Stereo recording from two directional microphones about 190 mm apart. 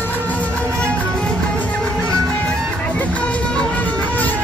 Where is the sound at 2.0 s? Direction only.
20° right (ahead or behind).